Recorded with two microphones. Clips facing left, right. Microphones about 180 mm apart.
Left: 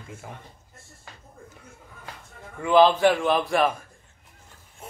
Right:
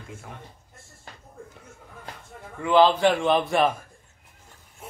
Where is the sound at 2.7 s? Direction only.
10° left (ahead or behind).